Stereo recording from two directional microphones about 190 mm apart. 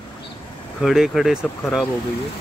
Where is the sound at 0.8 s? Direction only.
Centre (ahead or behind).